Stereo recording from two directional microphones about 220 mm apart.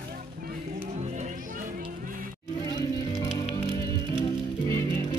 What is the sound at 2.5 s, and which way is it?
Music, 20° left (ahead or behind).